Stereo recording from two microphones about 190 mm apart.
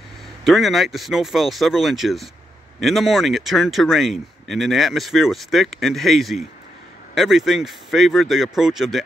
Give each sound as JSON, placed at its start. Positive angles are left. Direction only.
{"t": 0.4, "sound": "speech", "side_deg": 0}